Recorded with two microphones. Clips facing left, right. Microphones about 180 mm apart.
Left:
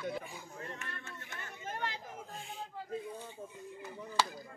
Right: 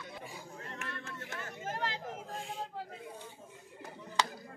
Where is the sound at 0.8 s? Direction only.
90° right.